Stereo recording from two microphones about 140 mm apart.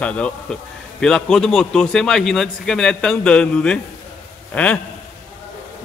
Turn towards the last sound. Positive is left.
turn(degrees=10)  # may be behind; listen again after turning